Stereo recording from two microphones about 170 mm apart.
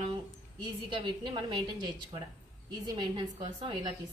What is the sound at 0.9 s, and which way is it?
A woman's voice, 25° right (ahead or behind).